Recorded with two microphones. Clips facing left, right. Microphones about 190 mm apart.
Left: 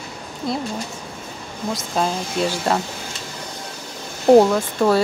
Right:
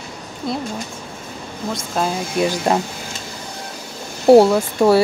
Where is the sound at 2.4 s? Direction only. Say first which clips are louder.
Right 3 dB; 15° right (ahead or behind).